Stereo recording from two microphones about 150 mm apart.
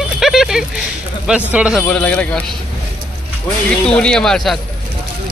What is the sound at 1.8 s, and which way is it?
Speech, 10° left (ahead or behind).